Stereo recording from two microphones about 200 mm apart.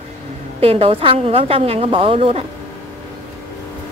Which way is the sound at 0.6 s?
30° right (ahead or behind).